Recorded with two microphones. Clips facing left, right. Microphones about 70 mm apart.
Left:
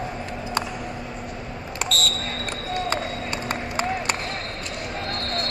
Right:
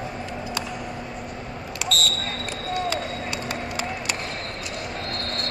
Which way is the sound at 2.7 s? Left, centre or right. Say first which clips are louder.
Even; left.